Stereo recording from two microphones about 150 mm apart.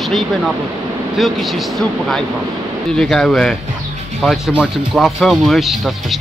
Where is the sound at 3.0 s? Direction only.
Centre (ahead or behind).